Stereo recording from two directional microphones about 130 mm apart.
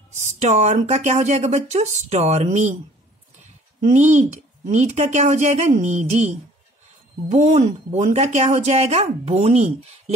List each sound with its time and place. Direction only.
0.2 s speech: 65° right (ahead or behind)
3.8 s speech: 65° right (ahead or behind)